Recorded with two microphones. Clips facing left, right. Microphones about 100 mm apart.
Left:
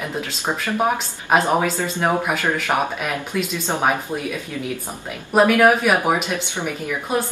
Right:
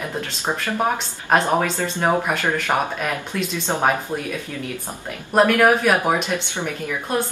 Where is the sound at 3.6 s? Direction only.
15° left (ahead or behind).